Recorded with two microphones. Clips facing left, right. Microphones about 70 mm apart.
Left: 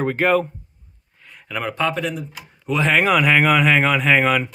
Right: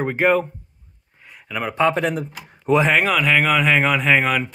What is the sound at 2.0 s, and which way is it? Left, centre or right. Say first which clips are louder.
Speech: right 3 dB; right.